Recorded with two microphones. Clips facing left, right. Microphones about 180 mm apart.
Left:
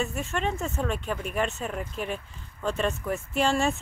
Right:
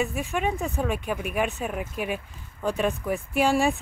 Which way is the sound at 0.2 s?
10° right (ahead or behind).